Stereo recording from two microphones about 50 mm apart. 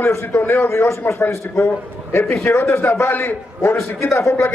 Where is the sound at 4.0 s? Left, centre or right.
Left.